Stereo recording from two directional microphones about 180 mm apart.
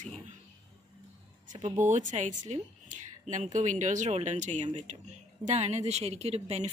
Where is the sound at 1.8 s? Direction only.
45° right (ahead or behind).